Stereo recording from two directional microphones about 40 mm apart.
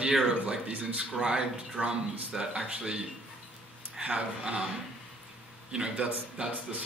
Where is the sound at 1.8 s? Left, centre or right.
Right.